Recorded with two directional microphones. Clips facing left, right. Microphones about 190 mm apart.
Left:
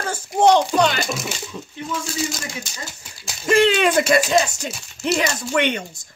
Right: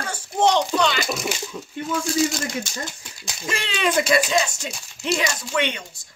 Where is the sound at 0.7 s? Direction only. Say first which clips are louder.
Left 3 dB; 45° left (ahead or behind).